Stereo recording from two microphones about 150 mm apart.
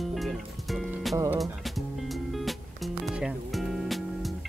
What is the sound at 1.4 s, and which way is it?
Music, centre (ahead or behind).